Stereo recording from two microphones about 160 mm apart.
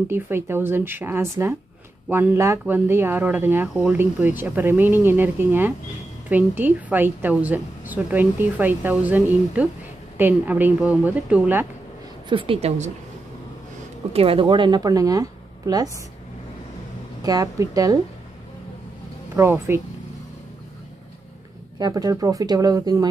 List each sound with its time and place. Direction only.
0.1 s speech: 15° right (ahead or behind)
10.1 s speech: 10° right (ahead or behind)
12.3 s a woman's voice: 35° right (ahead or behind)
14.1 s a woman's voice: 35° right (ahead or behind)
17.2 s a woman's voice: 20° right (ahead or behind)
19.3 s speech: 15° right (ahead or behind)
21.7 s a woman's voice: 25° right (ahead or behind)